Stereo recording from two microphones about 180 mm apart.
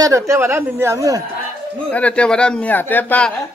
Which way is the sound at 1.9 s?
5° left (ahead or behind).